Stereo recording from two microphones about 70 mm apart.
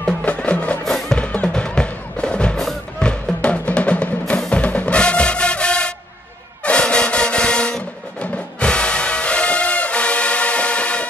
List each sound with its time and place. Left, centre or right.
0.2 s music: centre